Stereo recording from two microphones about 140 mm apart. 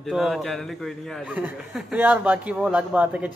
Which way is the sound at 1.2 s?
10° right (ahead or behind).